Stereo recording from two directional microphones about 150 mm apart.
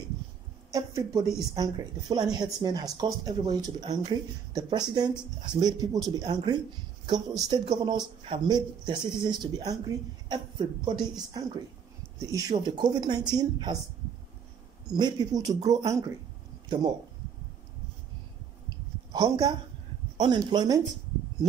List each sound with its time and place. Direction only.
0.7 s speech: 20° right (ahead or behind)
1.2 s speech: centre (ahead or behind)
1.5 s speech: 25° right (ahead or behind)
15.0 s speech: 30° right (ahead or behind)
19.1 s speech: 25° right (ahead or behind)